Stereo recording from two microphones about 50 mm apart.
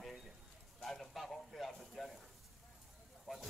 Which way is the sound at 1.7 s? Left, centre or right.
Centre.